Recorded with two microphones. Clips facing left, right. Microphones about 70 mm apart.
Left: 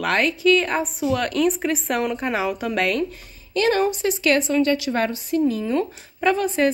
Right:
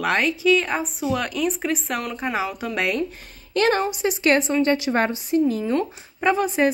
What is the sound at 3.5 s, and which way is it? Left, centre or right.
Speech, right.